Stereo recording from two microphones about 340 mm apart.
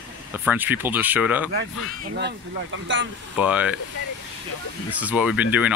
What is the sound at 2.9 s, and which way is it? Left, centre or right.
Speech, right.